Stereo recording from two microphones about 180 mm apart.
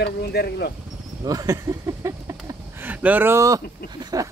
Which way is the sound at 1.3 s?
20° right (ahead or behind).